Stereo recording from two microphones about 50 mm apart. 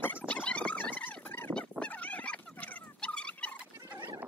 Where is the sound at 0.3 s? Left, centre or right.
Left.